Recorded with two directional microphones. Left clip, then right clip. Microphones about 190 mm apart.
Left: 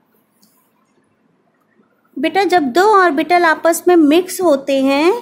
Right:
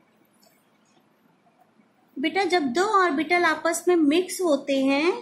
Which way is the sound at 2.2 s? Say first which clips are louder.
Left 9 dB; 55° left (ahead or behind).